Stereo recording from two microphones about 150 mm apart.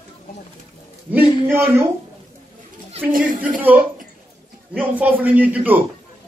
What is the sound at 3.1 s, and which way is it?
Speech, 65° right (ahead or behind).